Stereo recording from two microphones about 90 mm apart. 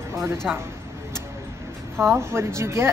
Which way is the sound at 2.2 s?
30° right (ahead or behind).